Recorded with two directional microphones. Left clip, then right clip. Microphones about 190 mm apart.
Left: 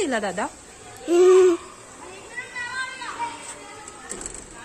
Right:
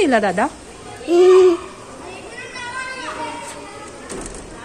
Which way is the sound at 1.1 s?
50° left (ahead or behind).